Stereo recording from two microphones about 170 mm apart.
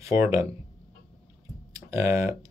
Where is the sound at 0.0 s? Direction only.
15° right (ahead or behind).